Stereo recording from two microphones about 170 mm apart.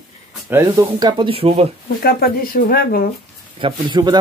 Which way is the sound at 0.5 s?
15° right (ahead or behind).